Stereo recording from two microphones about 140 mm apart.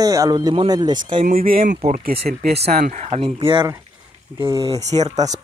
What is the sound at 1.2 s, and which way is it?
Speech, 90° right.